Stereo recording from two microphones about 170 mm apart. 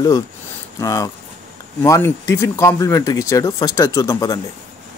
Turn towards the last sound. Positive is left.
turn(degrees=20)  # may be behind; listen again after turning